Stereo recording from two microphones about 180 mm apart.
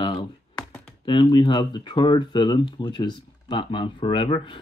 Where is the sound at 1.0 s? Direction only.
25° left (ahead or behind).